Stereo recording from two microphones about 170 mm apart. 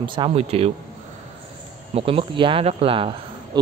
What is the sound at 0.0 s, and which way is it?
Speech, 30° right (ahead or behind).